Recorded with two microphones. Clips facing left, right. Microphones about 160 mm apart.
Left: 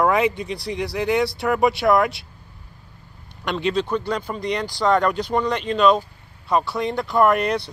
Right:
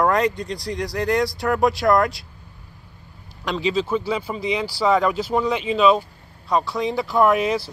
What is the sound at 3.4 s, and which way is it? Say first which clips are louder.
Speech: even; centre (ahead or behind).